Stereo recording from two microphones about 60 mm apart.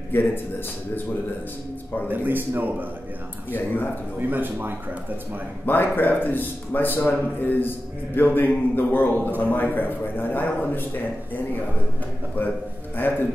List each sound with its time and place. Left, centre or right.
0.1 s speech: left
2.0 s a man's voice: right
3.5 s a man's voice: left
4.2 s a man's voice: right
5.7 s a man's voice: left
13.0 s a man's voice: left